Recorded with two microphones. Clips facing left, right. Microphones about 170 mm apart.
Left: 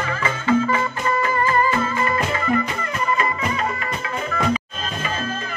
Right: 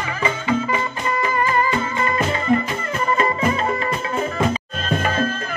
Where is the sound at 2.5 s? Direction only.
25° right (ahead or behind).